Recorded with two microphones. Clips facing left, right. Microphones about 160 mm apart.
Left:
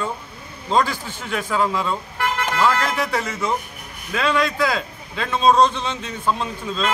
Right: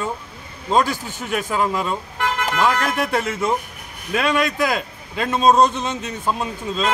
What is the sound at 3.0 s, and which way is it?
Speech, 50° right (ahead or behind).